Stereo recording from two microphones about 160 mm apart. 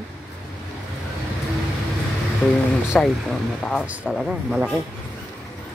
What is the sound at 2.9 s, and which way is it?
Speech, centre (ahead or behind).